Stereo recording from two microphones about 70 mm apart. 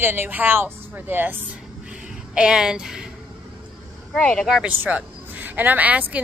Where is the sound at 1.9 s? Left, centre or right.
Centre.